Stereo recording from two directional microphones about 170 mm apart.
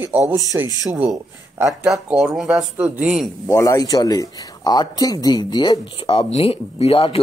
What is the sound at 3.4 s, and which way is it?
Speech, 20° left (ahead or behind).